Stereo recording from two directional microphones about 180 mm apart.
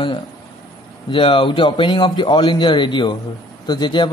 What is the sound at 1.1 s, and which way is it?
Speech, 30° left (ahead or behind).